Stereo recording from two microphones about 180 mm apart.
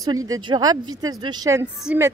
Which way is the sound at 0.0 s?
20° right (ahead or behind).